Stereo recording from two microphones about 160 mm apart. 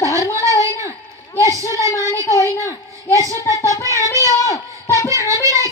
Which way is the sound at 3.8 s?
20° left (ahead or behind).